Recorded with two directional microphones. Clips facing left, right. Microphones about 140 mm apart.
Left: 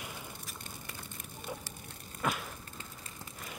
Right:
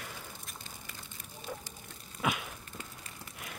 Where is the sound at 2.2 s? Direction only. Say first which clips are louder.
Right 1 dB; 5° right (ahead or behind).